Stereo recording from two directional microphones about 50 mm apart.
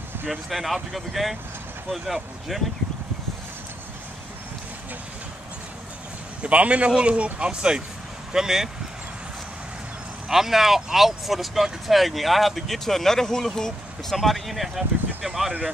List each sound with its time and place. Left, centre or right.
0.3 s speech: centre
6.4 s speech: right
10.2 s speech: centre